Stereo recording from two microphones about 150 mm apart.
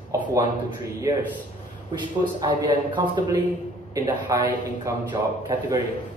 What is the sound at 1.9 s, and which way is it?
A man's voice, 30° right (ahead or behind).